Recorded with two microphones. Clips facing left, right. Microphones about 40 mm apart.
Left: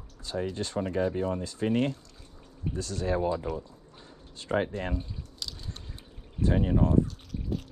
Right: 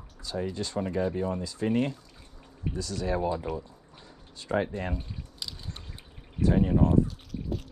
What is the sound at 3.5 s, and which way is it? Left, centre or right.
Speech, centre.